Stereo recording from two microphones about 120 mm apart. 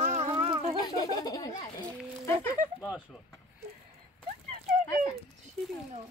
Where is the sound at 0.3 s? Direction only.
50° right (ahead or behind).